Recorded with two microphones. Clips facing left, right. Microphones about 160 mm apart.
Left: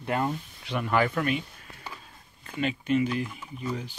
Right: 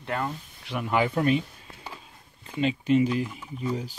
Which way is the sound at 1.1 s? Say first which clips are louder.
Right 4 dB; 30° right (ahead or behind).